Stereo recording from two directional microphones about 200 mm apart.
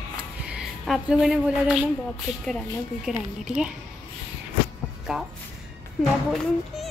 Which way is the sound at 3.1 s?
5° right (ahead or behind).